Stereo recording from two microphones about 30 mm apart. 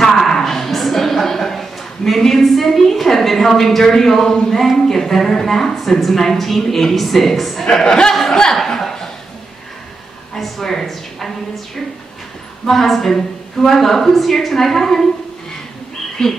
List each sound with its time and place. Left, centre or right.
0.3 s a sound: centre
4.7 s a woman's voice: centre
7.6 s speech: centre
8.1 s chuckle: centre
10.3 s a sound: centre
12.8 s a woman's voice: centre
16.2 s speech: centre